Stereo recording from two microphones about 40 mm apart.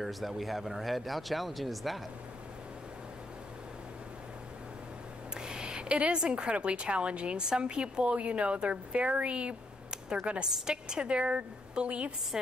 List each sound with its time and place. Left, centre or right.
0.0 s speech: centre
5.4 s a sound: centre
6.1 s a woman's voice: right
10.2 s a woman's voice: right
10.5 s a woman's voice: centre